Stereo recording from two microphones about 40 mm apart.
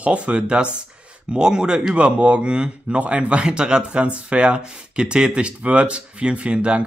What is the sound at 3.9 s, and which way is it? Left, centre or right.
Speech, right.